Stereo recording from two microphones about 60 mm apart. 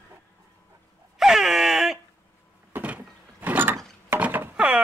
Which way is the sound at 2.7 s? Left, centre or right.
Right.